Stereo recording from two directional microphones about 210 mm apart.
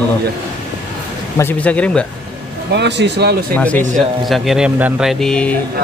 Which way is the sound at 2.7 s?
55° right (ahead or behind).